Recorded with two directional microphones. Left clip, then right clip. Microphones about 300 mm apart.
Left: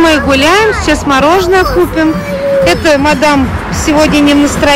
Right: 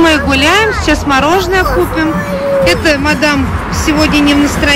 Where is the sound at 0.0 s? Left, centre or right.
Centre.